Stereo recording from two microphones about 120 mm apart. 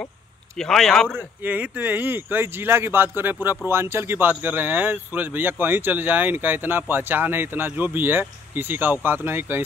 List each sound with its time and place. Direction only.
0.6 s speech: 5° left (ahead or behind)
1.1 s speech: 15° right (ahead or behind)